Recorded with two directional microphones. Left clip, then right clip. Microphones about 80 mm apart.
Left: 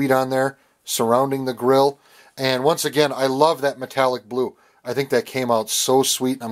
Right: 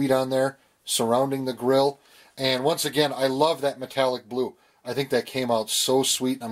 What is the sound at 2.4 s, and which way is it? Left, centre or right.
Speech, left.